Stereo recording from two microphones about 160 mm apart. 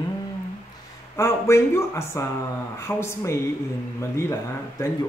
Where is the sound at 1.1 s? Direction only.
15° left (ahead or behind).